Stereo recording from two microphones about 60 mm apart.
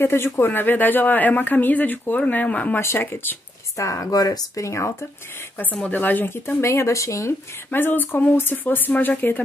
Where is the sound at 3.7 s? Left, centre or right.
Left.